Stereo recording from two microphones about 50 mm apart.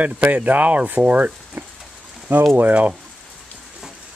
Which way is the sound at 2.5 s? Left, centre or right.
Right.